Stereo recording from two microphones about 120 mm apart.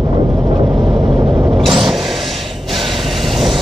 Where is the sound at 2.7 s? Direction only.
Centre (ahead or behind).